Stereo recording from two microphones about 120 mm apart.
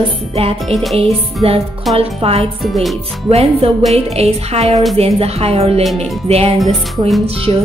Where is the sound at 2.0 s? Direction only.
55° right (ahead or behind).